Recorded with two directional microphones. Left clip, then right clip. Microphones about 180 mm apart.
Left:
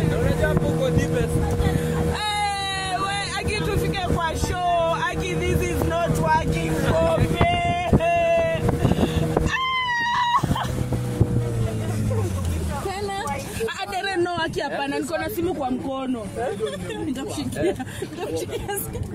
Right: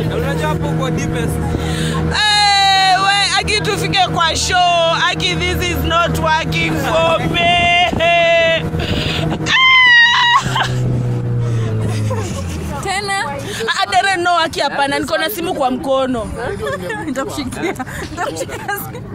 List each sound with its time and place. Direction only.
2.1 s speech: 15° right (ahead or behind)
7.1 s a sound: 5° right (ahead or behind)
9.1 s music: 5° right (ahead or behind)
13.7 s speech: 15° right (ahead or behind)